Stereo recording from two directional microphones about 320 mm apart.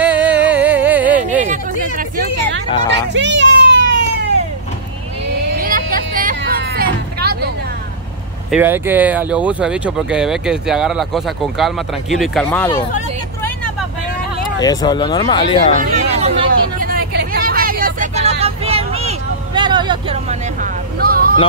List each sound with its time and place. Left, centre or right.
0.0 s music: centre
2.9 s a sound: right
5.5 s vehicle: right
8.5 s speech: centre
14.6 s speech: centre
15.7 s vehicle: right
21.0 s vehicle: right